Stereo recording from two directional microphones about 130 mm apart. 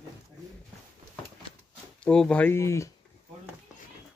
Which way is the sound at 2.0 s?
5° left (ahead or behind).